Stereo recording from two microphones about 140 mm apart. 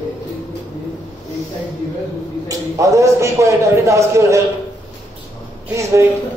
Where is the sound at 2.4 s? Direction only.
25° right (ahead or behind).